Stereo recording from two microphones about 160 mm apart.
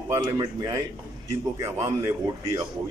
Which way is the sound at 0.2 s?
25° right (ahead or behind).